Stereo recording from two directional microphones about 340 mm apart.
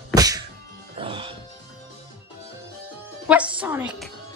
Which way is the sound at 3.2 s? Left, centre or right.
Centre.